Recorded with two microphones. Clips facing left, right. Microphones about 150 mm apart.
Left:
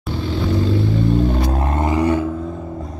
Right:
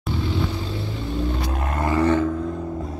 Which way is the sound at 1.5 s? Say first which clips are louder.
Left 4 dB; 30° left (ahead or behind).